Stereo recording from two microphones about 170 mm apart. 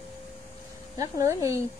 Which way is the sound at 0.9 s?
20° right (ahead or behind).